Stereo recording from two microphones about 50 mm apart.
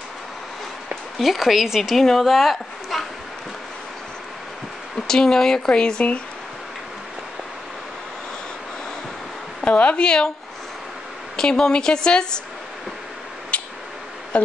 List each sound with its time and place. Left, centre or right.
1.1 s a woman's voice: centre
4.9 s speech: centre
9.7 s a woman's voice: left
11.3 s speech: centre
13.5 s a sound: left
14.3 s a woman's voice: left